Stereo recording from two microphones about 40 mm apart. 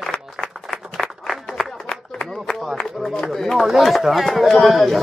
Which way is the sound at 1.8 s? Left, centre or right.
Centre.